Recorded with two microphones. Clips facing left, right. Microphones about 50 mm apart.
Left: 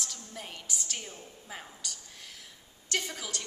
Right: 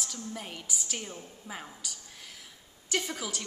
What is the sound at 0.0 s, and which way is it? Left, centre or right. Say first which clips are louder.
A woman's voice: right 3 dB; centre.